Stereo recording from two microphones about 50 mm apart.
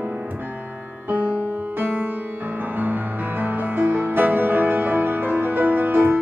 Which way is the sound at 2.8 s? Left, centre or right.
Right.